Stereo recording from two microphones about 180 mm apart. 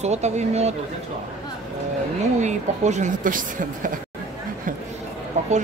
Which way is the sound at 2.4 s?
40° right (ahead or behind).